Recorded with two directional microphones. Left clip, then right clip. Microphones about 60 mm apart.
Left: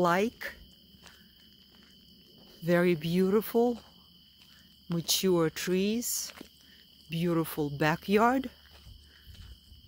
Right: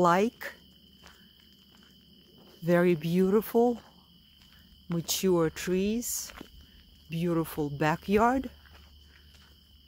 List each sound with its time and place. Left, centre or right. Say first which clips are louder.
0.0 s speech: right 3 dB; right
2.6 s speech: right 2 dB; right
5.0 s speech: even; centre
8.3 s speech: even; centre